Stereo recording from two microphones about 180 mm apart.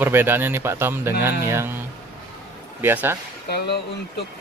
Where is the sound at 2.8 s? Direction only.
10° right (ahead or behind).